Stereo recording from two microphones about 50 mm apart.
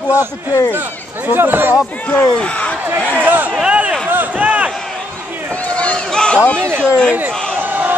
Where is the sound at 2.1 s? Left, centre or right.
Left.